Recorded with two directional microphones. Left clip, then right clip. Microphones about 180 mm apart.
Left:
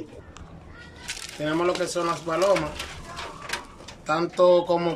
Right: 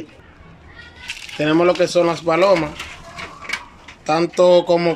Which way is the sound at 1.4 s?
35° right (ahead or behind).